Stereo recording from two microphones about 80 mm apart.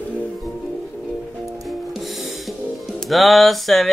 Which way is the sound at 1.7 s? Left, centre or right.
Centre.